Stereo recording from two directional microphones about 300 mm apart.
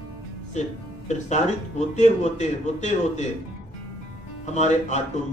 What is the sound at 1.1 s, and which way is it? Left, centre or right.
A man's voice, left.